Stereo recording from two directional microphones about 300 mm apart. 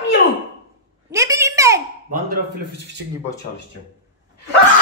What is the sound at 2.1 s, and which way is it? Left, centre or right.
Speech, right.